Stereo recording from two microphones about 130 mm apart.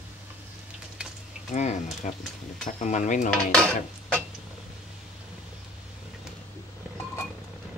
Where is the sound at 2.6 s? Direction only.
70° left (ahead or behind).